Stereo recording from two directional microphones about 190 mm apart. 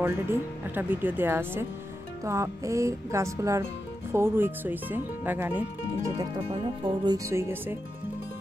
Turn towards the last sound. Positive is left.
turn(degrees=-15)  # may be behind; listen again after turning